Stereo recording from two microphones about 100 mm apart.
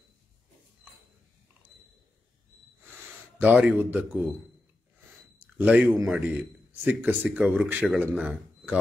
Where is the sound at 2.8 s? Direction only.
20° right (ahead or behind).